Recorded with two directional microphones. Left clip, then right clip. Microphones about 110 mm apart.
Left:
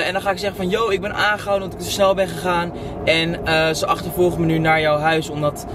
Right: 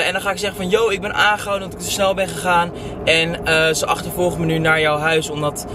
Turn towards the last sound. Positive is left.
turn(degrees=-15)  # may be behind; listen again after turning